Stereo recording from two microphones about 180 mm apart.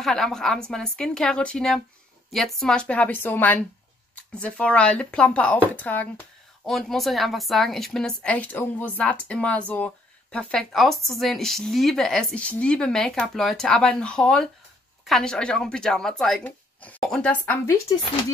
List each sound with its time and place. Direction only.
0.0 s a woman's voice: 5° left (ahead or behind)
17.5 s a woman's voice: 15° left (ahead or behind)